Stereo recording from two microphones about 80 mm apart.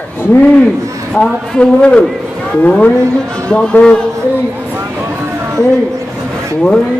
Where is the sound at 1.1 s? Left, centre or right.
Centre.